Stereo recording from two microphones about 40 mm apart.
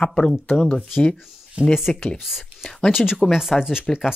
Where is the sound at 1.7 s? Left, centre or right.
Centre.